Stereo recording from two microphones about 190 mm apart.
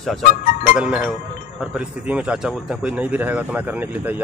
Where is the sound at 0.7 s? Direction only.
5° right (ahead or behind).